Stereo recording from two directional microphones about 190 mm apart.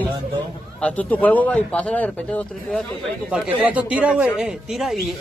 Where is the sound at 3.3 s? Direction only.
5° right (ahead or behind).